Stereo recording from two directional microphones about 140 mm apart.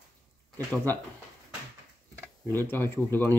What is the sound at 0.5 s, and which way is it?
Speech, 10° left (ahead or behind).